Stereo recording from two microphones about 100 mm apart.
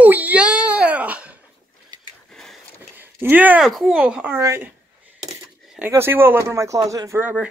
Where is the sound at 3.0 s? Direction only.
20° right (ahead or behind).